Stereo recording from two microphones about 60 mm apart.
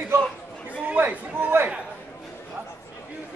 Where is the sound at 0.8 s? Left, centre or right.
Right.